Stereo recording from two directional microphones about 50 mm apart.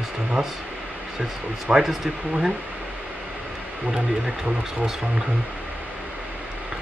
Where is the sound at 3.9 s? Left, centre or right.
Centre.